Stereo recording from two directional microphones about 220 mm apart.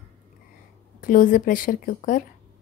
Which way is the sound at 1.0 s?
40° left (ahead or behind).